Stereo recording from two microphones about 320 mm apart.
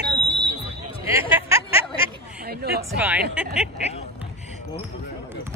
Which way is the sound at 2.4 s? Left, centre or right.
Right.